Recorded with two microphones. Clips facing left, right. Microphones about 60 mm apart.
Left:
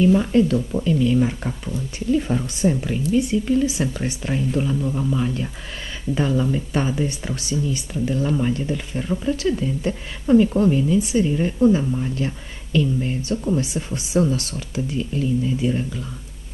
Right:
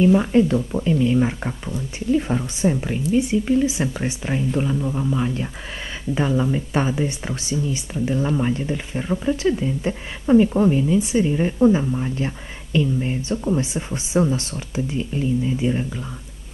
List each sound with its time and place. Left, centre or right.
0.0 s speech: centre